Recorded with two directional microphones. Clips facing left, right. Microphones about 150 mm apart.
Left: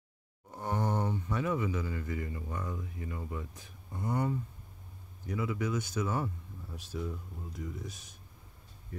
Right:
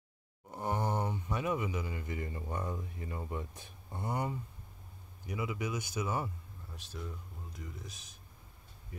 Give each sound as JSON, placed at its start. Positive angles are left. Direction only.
{"t": 0.5, "sound": "a sound", "side_deg": -10}
{"t": 2.2, "sound": "speech", "side_deg": -30}
{"t": 4.1, "sound": "speech", "side_deg": -15}
{"t": 6.7, "sound": "speech", "side_deg": 5}